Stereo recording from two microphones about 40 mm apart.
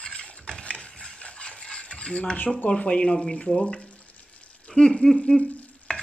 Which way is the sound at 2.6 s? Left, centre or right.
Left.